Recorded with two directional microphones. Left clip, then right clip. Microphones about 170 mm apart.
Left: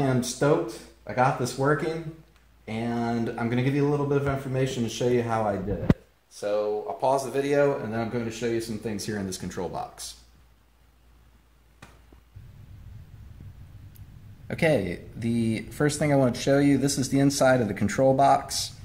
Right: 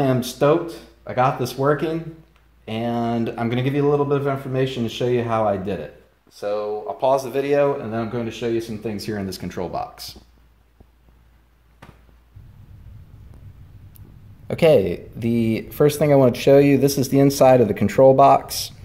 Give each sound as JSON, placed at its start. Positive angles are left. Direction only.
{"t": 0.0, "sound": "speech", "side_deg": -35}
{"t": 6.4, "sound": "speech", "side_deg": -25}
{"t": 14.9, "sound": "speech", "side_deg": -30}